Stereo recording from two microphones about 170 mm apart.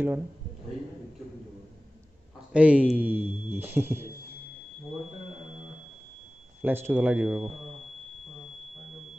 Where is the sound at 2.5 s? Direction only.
10° right (ahead or behind).